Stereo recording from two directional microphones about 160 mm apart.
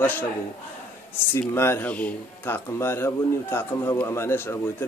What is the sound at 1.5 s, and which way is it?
A man's voice, 15° left (ahead or behind).